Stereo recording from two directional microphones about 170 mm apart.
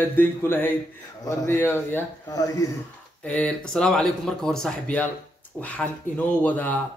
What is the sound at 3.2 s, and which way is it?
Speech, 5° left (ahead or behind).